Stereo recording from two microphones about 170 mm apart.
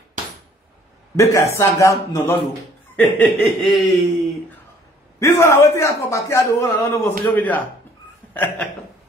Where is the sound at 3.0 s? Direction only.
Centre (ahead or behind).